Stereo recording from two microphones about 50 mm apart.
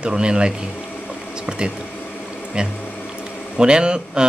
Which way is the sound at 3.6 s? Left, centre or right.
Centre.